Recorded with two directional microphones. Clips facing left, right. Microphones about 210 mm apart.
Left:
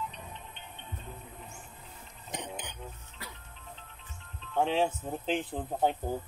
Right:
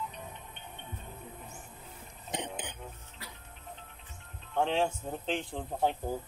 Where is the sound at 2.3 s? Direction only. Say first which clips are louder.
Right 2 dB; 30° right (ahead or behind).